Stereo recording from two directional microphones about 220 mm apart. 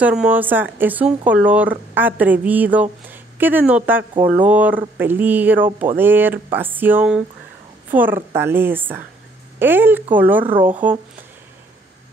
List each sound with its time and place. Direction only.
0.0 s a woman's voice: 5° right (ahead or behind)
10.4 s speech: 25° right (ahead or behind)
10.7 s a woman's voice: 10° right (ahead or behind)